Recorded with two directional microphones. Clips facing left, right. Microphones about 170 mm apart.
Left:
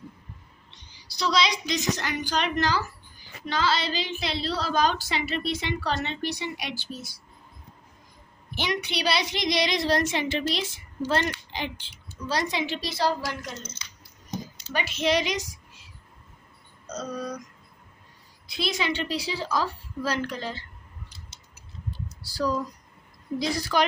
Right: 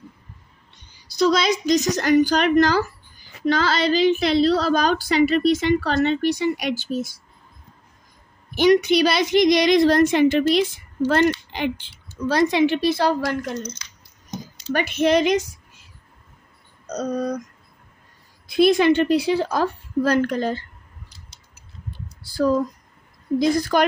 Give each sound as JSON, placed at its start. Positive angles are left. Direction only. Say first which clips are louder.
{"t": 0.7, "sound": "a woman's voice", "louder": "even", "side_deg": -50}
{"t": 8.5, "sound": "a woman's voice", "louder": "right 14 dB", "side_deg": -45}
{"t": 14.7, "sound": "speech", "louder": "right 7 dB", "side_deg": -55}
{"t": 17.1, "sound": "a woman's voice", "louder": "right 9 dB", "side_deg": -55}
{"t": 18.5, "sound": "a woman's voice", "louder": "right 13 dB", "side_deg": -50}
{"t": 21.9, "sound": "typing", "louder": "right 9 dB", "side_deg": -55}
{"t": 23.4, "sound": "a woman's voice", "louder": "right 6 dB", "side_deg": -50}